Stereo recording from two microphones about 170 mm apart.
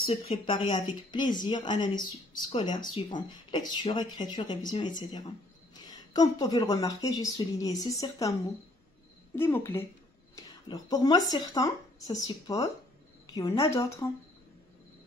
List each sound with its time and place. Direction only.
0.3 s a woman's voice: 30° left (ahead or behind)